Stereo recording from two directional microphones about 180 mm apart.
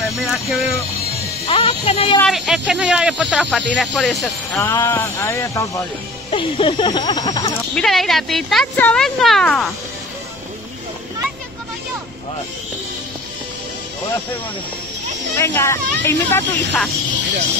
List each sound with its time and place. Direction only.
0.2 s speech: centre (ahead or behind)
1.4 s speech: 30° left (ahead or behind)
2.2 s speech: centre (ahead or behind)
4.6 s speech: 15° left (ahead or behind)
7.7 s speech: centre (ahead or behind)
15.3 s speech: 15° left (ahead or behind)